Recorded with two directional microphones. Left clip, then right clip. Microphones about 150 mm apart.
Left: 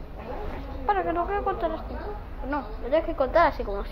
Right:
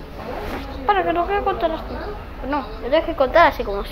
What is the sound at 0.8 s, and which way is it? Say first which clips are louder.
A woman's voice: right 7 dB; 15° right (ahead or behind).